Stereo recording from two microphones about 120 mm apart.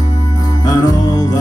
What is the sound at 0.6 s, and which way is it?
Music, 35° left (ahead or behind).